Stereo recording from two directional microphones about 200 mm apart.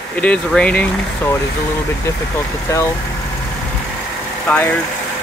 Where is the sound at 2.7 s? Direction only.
15° left (ahead or behind).